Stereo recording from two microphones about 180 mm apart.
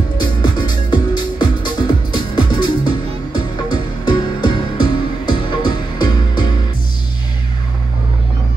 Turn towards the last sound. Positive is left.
turn(degrees=25)  # may be behind; listen again after turning